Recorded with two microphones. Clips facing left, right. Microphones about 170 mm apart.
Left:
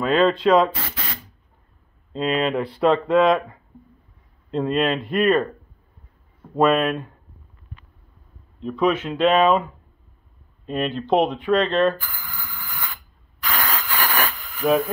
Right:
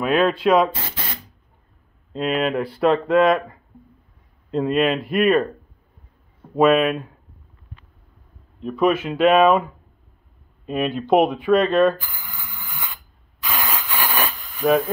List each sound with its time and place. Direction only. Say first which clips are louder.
0.0 s speech: even; 10° right (ahead or behind)
2.1 s speech: even; 5° right (ahead or behind)
6.5 s speech: right 2 dB; 5° right (ahead or behind)
8.6 s speech: right 2 dB; 5° right (ahead or behind)
12.0 s a sound: left 1 dB; 20° right (ahead or behind)